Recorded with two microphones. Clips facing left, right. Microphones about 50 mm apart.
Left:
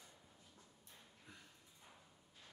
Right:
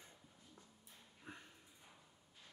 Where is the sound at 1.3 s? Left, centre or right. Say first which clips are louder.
Right 7 dB; right.